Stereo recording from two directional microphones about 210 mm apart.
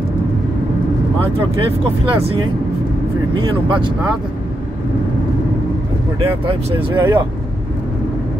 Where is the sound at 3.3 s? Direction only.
25° right (ahead or behind).